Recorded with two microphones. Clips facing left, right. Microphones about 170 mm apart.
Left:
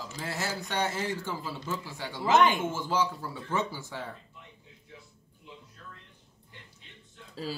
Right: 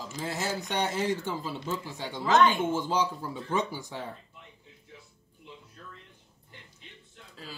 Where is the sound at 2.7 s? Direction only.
20° right (ahead or behind).